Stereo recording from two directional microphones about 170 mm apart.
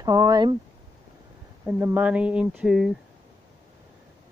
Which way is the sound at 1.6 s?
10° right (ahead or behind).